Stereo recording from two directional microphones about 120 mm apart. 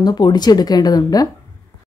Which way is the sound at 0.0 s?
35° left (ahead or behind).